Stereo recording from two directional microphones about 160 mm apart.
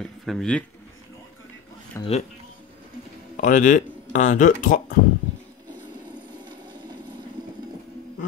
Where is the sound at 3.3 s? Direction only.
55° left (ahead or behind).